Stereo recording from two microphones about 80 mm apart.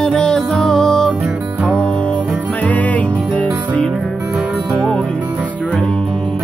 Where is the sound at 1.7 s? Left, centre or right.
Centre.